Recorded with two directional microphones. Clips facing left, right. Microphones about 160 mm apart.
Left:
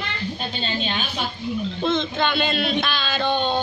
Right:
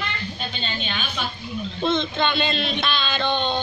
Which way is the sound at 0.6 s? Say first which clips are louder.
Left 5 dB; 35° left (ahead or behind).